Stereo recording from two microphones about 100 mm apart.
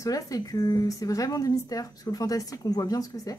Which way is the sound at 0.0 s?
35° left (ahead or behind).